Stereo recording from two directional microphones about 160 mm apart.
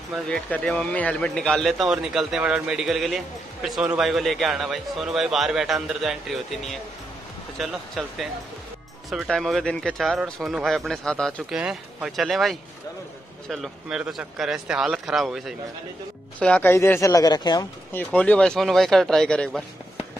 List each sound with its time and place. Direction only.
0.1 s speech: 5° left (ahead or behind); by 17.6 s 25° left (ahead or behind)
17.9 s speech: 10° left (ahead or behind)